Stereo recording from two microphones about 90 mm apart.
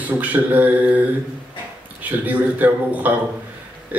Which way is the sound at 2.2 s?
20° right (ahead or behind).